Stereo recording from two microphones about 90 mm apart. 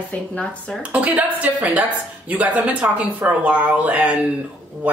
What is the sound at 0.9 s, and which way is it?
Speech, 15° right (ahead or behind).